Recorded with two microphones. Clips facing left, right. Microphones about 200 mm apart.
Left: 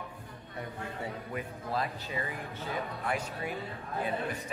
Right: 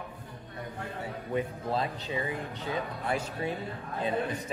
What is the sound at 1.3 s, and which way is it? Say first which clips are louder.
Speech: right 7 dB; 25° right (ahead or behind).